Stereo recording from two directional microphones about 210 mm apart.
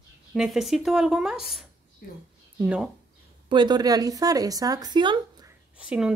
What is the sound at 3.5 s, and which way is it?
A woman's voice, 20° right (ahead or behind).